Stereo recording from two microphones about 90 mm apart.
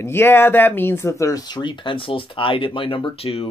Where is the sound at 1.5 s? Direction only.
60° left (ahead or behind).